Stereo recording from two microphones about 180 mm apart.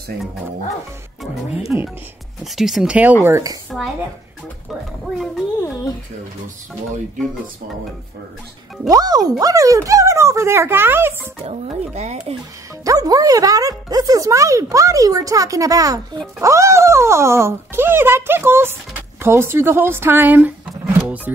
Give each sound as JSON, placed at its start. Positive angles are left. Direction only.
{"t": 1.7, "sound": "speech", "side_deg": -10}
{"t": 8.8, "sound": "speech", "side_deg": -20}
{"t": 11.4, "sound": "speech", "side_deg": -35}
{"t": 12.8, "sound": "speech", "side_deg": -20}